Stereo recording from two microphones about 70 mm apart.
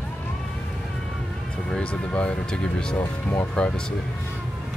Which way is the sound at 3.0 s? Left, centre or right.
Left.